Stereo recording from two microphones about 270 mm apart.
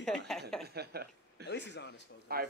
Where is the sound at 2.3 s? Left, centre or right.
Right.